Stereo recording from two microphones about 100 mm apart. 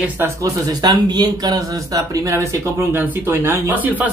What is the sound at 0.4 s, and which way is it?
Speech, 40° right (ahead or behind).